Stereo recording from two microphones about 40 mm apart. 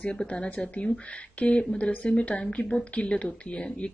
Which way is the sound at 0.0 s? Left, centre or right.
Left.